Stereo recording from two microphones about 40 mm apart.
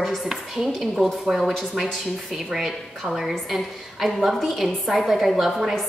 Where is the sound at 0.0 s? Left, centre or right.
Centre.